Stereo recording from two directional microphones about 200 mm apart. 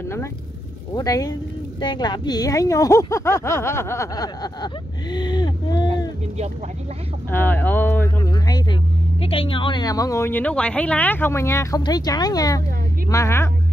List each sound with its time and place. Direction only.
0.9 s a woman's voice: 20° left (ahead or behind)
5.9 s a sound: 35° right (ahead or behind)
7.2 s a woman's voice: 10° left (ahead or behind)